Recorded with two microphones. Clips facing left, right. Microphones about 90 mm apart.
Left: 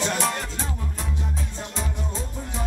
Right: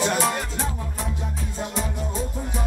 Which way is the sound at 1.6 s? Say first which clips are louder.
Right 7 dB; 15° right (ahead or behind).